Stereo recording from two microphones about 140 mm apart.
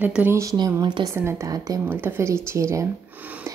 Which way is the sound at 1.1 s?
20° right (ahead or behind).